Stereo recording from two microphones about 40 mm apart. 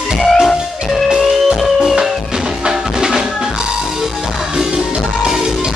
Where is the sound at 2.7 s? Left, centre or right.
Centre.